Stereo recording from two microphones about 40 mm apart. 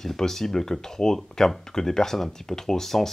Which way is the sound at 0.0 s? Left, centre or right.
Centre.